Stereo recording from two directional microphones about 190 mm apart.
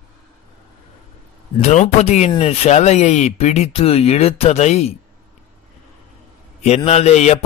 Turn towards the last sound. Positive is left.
turn(degrees=35)  # may be behind; listen again after turning